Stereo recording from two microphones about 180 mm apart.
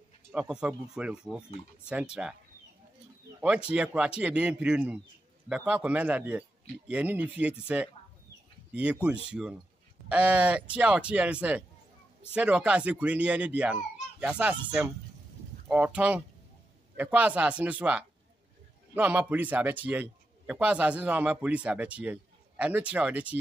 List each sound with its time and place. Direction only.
0.3 s a man's voice: 5° right (ahead or behind)
3.3 s a man's voice: 5° right (ahead or behind)
9.0 s a man's voice: 5° right (ahead or behind)